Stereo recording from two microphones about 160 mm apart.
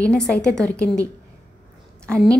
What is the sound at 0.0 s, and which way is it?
A woman's voice, 5° left (ahead or behind).